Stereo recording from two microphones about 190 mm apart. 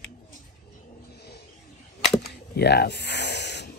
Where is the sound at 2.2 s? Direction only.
55° left (ahead or behind).